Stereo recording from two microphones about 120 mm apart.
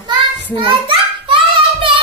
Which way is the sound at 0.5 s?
45° right (ahead or behind).